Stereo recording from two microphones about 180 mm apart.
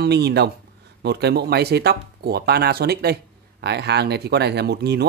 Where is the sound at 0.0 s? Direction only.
65° right (ahead or behind).